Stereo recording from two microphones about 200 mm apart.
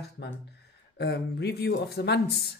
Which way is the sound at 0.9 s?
55° left (ahead or behind).